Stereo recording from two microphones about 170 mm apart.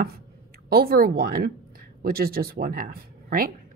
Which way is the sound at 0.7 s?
60° right (ahead or behind).